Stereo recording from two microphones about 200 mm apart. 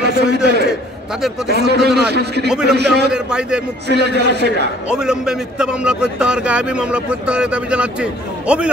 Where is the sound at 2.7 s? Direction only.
55° right (ahead or behind).